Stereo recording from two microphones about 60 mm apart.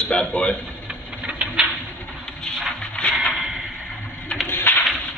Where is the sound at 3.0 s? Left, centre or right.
Centre.